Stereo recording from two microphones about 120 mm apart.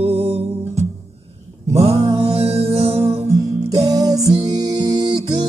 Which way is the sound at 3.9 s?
30° right (ahead or behind).